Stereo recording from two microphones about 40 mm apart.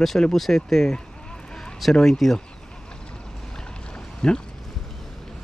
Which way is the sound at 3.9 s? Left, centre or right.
Left.